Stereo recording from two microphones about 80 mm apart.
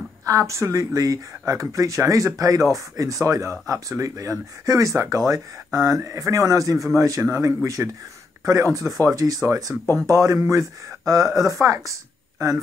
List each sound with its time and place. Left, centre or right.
0.2 s speech: right